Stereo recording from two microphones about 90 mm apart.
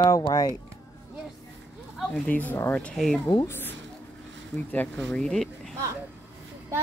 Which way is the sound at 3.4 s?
25° left (ahead or behind).